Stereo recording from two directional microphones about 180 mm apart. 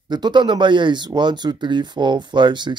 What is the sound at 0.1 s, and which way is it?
Speech, 25° right (ahead or behind).